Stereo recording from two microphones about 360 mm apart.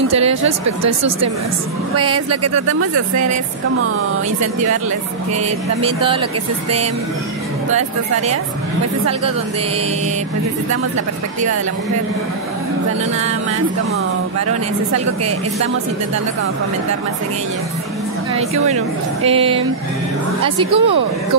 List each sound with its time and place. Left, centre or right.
0.1 s speech: centre
2.0 s speech: right
5.8 s speech: centre
18.3 s speech: centre